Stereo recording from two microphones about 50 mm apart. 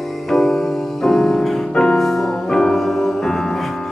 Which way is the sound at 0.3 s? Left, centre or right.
Centre.